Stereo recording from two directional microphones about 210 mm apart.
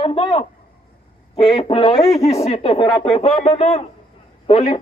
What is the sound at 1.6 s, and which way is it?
Speech, 25° left (ahead or behind).